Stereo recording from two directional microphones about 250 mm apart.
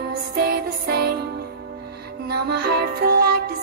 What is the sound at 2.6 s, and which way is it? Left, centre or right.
Music, right.